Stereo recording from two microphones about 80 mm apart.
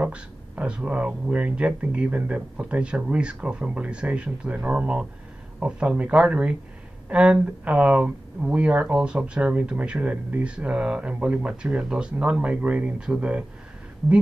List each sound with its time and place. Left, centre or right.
0.0 s speech: centre